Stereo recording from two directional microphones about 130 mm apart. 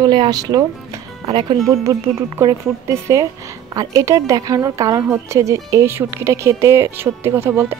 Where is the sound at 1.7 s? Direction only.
25° right (ahead or behind).